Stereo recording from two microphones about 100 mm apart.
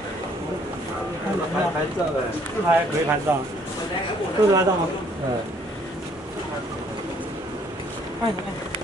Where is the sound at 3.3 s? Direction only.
20° right (ahead or behind).